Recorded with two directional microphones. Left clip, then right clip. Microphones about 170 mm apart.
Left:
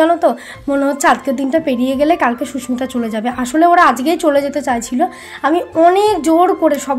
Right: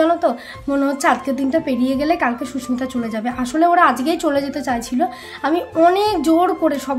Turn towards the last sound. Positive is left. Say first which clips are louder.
# left 5 dB
turn(degrees=25)  # may be behind; listen again after turning